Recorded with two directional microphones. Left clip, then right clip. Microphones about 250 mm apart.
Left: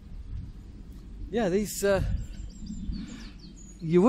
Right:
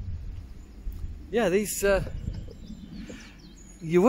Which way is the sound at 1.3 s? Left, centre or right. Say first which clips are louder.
Right 3 dB; centre.